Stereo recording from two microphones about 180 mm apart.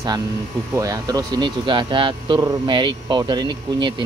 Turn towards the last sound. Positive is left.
turn(degrees=-25)  # may be behind; listen again after turning